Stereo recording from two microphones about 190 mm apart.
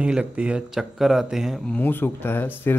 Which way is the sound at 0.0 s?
5° right (ahead or behind).